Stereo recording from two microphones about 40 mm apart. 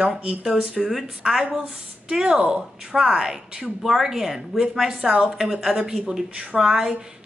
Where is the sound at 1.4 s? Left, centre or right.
Right.